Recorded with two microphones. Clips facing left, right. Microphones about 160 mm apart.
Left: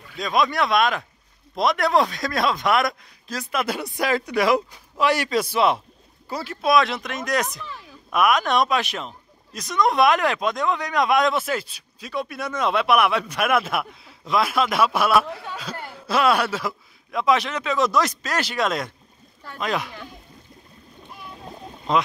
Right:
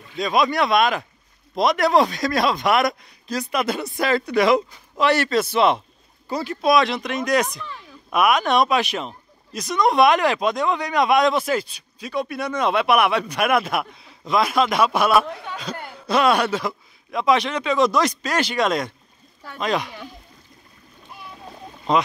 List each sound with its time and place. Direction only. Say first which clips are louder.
0.2 s speech: right 2 dB; centre (ahead or behind)